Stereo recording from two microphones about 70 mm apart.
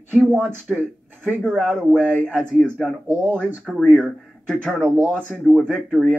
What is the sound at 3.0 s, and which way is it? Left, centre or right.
Speech, right.